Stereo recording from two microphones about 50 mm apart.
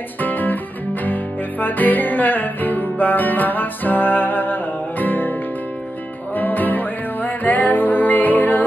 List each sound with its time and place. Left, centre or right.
0.2 s music: left
6.3 s music: left